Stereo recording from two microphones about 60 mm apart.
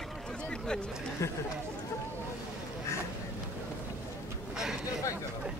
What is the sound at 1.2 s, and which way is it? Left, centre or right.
Speech, left.